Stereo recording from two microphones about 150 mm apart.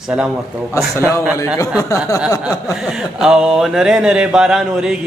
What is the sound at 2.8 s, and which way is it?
A man's voice, 5° right (ahead or behind).